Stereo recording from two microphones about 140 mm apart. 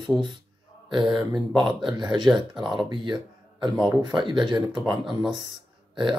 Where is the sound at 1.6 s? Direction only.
30° right (ahead or behind).